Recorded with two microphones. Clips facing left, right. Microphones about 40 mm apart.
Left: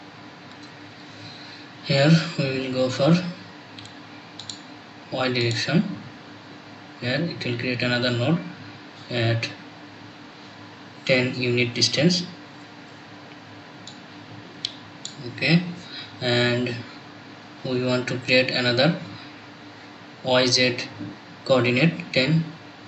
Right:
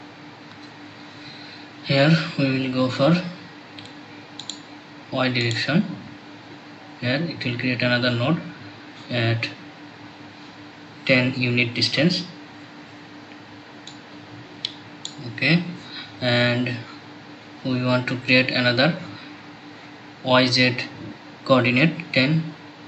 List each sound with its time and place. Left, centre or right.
1.9 s speech: centre
5.1 s speech: centre
7.0 s speech: centre
11.1 s speech: centre
15.3 s speech: centre
20.2 s speech: centre